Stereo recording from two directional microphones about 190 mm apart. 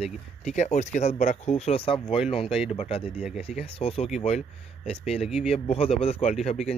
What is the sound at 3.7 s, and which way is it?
Speech, 30° left (ahead or behind).